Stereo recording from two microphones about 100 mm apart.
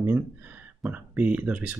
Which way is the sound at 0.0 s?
20° right (ahead or behind).